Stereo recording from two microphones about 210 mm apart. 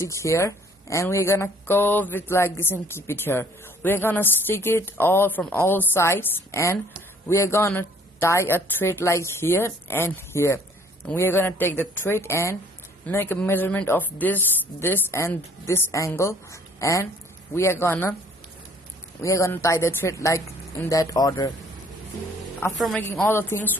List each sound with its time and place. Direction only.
0.0 s speech: 15° left (ahead or behind)
19.2 s speech: 15° left (ahead or behind)
22.8 s speech: centre (ahead or behind)